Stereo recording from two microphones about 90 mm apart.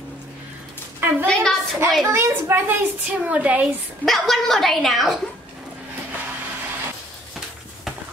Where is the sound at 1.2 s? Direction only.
10° left (ahead or behind).